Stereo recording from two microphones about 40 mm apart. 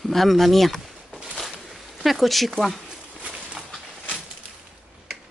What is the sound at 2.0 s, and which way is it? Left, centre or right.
Speech, centre.